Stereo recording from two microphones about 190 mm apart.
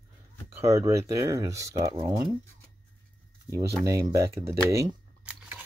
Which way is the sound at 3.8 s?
15° right (ahead or behind).